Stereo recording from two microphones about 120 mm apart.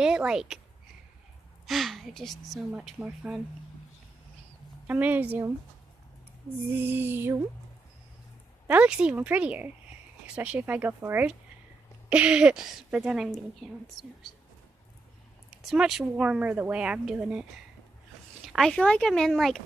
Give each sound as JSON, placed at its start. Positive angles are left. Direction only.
{"t": 0.0, "sound": "speech", "side_deg": -5}
{"t": 1.7, "sound": "a woman's voice", "side_deg": 0}
{"t": 4.8, "sound": "speech", "side_deg": -15}
{"t": 6.7, "sound": "speech", "side_deg": -15}
{"t": 8.6, "sound": "speech", "side_deg": -10}
{"t": 15.6, "sound": "speech", "side_deg": 0}